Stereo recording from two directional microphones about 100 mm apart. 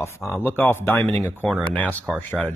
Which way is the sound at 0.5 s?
20° left (ahead or behind).